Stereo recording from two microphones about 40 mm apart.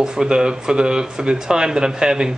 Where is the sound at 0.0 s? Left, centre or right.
Centre.